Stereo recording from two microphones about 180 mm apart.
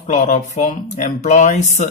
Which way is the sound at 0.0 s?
45° left (ahead or behind).